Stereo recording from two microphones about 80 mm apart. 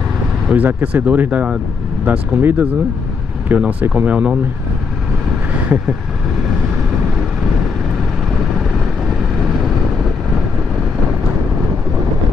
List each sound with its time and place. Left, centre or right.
0.5 s speech: centre